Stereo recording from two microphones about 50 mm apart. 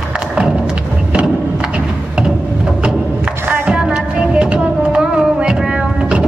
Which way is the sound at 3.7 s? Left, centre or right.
Centre.